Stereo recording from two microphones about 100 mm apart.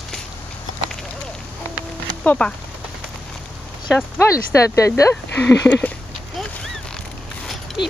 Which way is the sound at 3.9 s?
30° left (ahead or behind).